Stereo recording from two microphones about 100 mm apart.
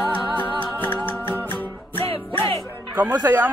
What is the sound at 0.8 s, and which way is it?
Music, 15° left (ahead or behind).